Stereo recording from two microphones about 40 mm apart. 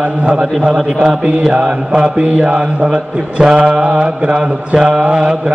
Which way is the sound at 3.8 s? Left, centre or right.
Right.